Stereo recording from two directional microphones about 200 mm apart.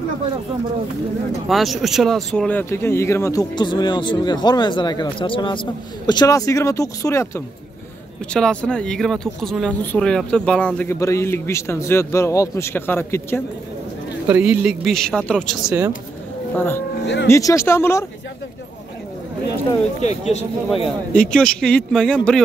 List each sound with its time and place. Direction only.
1.5 s speech: centre (ahead or behind)
14.2 s a man's voice: 5° right (ahead or behind); by 16.8 s 10° left (ahead or behind)
17.0 s speech: 60° left (ahead or behind)
17.3 s speech: 15° left (ahead or behind)
20.0 s speech: 35° left (ahead or behind)
21.3 s a man's voice: 5° left (ahead or behind)